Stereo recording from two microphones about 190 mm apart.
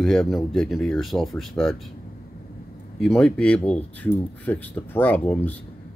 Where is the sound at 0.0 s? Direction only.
Centre (ahead or behind).